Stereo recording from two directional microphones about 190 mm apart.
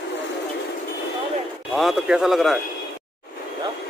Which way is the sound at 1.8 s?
Centre (ahead or behind).